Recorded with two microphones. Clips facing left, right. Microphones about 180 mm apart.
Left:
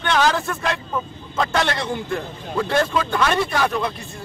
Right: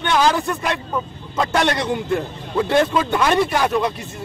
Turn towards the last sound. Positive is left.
turn(degrees=-20)  # may be behind; listen again after turning